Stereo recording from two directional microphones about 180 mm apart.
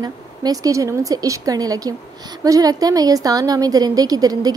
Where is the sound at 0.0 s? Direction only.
20° right (ahead or behind).